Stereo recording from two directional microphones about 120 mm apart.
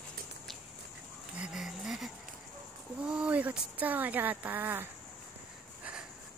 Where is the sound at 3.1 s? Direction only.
10° right (ahead or behind).